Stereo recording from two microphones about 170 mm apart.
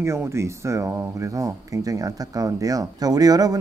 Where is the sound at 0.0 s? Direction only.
15° right (ahead or behind).